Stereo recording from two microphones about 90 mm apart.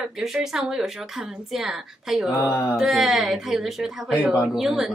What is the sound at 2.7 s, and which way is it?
A woman's voice, 5° right (ahead or behind).